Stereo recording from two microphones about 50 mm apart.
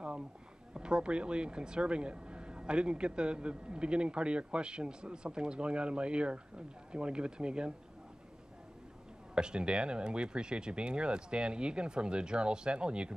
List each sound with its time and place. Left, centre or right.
0.7 s speech: centre
9.3 s speech: centre